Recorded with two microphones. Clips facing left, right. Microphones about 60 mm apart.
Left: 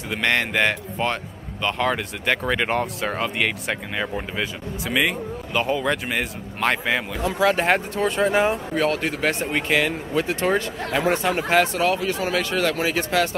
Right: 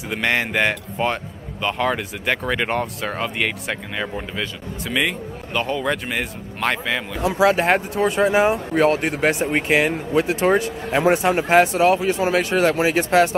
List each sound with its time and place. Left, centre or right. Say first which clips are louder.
0.1 s speech: right 1 dB; centre
8.7 s speech: right 4 dB; right